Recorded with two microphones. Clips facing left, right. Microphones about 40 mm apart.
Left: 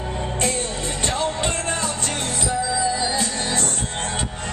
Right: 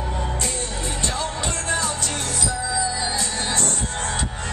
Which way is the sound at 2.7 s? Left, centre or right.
Centre.